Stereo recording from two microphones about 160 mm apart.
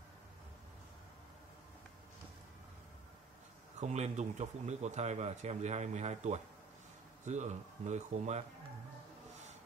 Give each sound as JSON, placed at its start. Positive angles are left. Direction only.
{"t": 3.8, "sound": "speech", "side_deg": -45}